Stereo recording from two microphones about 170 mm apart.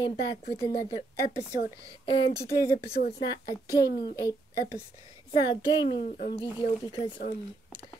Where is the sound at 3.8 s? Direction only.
70° left (ahead or behind).